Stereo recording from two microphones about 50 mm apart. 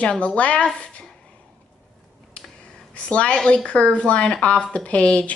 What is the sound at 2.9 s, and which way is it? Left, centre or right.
Speech, left.